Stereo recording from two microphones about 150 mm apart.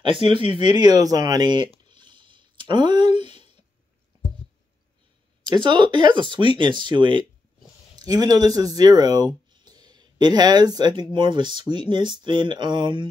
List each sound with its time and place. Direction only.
0.0 s speech: 35° right (ahead or behind)
0.4 s speech: 45° left (ahead or behind)
0.7 s speech: 25° right (ahead or behind)
1.9 s a sound: 30° right (ahead or behind)
5.4 s speech: 30° right (ahead or behind)